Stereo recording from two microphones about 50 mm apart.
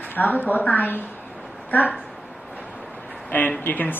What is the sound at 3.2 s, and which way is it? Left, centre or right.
Speech, left.